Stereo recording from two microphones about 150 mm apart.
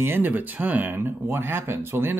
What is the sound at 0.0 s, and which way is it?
Speech, 15° right (ahead or behind).